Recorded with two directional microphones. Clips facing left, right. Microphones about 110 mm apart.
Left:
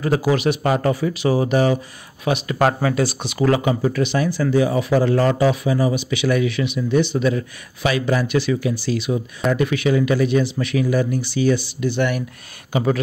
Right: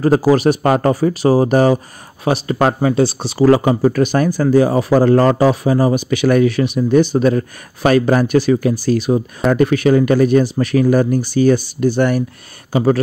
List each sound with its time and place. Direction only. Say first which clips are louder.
0.0 s speech: right 6 dB; 40° right (ahead or behind)